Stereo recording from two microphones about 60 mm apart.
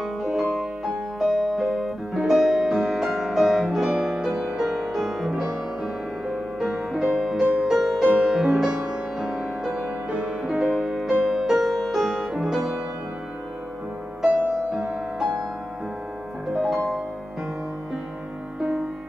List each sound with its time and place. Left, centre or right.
0.0 s music: centre
0.8 s music: centre
5.3 s music: centre
16.5 s music: centre
18.6 s music: centre